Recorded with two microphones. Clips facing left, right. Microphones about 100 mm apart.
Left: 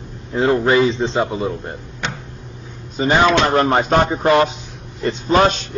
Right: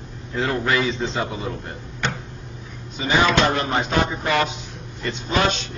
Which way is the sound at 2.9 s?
40° left (ahead or behind).